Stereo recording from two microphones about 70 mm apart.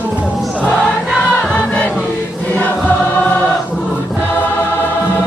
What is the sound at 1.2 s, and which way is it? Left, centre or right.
Music, centre.